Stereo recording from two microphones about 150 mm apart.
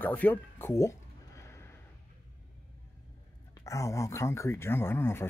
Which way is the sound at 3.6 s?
20° left (ahead or behind).